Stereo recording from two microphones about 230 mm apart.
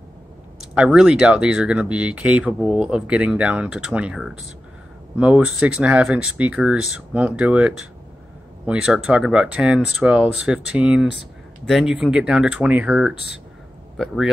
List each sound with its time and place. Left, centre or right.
0.7 s speech: centre